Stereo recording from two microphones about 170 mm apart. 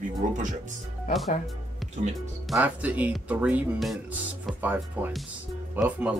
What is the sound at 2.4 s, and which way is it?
Speech, 10° right (ahead or behind).